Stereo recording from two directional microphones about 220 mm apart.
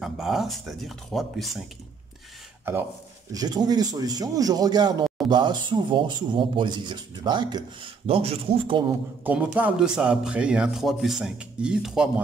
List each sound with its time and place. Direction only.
0.0 s speech: centre (ahead or behind)
3.3 s speech: 15° right (ahead or behind)
9.2 s speech: 5° right (ahead or behind)